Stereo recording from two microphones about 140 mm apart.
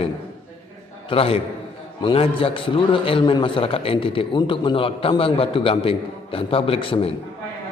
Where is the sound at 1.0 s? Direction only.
45° left (ahead or behind).